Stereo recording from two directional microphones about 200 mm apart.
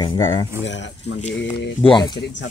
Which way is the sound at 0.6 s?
65° left (ahead or behind).